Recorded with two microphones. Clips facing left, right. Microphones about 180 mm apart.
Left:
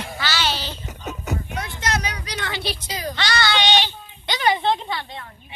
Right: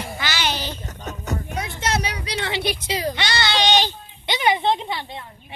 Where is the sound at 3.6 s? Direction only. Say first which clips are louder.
Right 5 dB; 40° right (ahead or behind).